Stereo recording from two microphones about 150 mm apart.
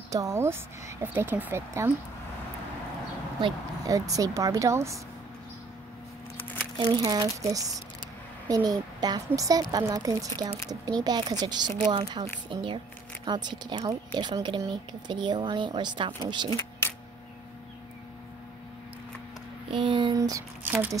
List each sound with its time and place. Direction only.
0.1 s speech: 20° right (ahead or behind)
3.3 s speech: 35° right (ahead or behind)
3.9 s speech: 25° right (ahead or behind)
6.8 s speech: 30° right (ahead or behind)
16.4 s a sound: 20° left (ahead or behind)
19.7 s speech: 35° right (ahead or behind)